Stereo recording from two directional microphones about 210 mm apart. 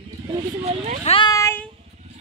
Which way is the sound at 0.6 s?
30° right (ahead or behind).